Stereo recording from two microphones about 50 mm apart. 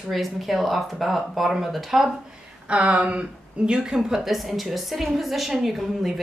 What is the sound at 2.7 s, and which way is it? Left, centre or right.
A woman's voice, right.